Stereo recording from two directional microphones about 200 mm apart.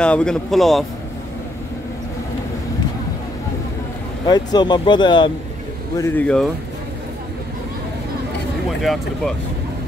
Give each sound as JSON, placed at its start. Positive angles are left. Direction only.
{"t": 0.0, "sound": "speech", "side_deg": 5}
{"t": 4.3, "sound": "speech", "side_deg": 20}
{"t": 5.9, "sound": "speech", "side_deg": 10}
{"t": 8.6, "sound": "speech", "side_deg": 0}